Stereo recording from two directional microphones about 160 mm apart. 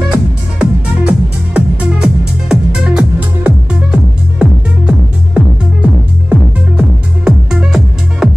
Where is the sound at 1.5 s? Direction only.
10° right (ahead or behind).